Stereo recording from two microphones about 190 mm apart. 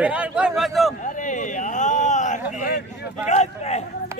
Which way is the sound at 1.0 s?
40° left (ahead or behind).